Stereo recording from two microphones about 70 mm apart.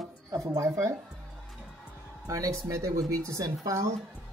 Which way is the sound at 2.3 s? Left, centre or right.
Right.